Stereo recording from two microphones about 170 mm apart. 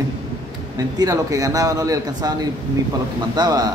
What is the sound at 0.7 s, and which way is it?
Speech, 20° right (ahead or behind).